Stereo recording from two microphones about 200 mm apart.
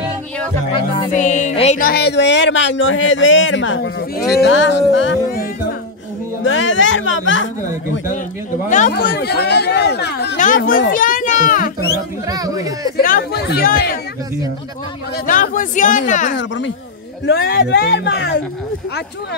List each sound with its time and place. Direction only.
1.1 s speech: 35° left (ahead or behind)
1.9 s speech: 55° left (ahead or behind)
6.4 s speech: 70° left (ahead or behind)
8.6 s speech: 40° left (ahead or behind); by 10.3 s 55° left (ahead or behind)
10.3 s speech: 40° left (ahead or behind)
12.3 s speech: 20° right (ahead or behind)
12.9 s speech: 50° left (ahead or behind)
15.2 s speech: 40° left (ahead or behind)
16.3 s speech: 65° left (ahead or behind)
17.4 s speech: 55° left (ahead or behind)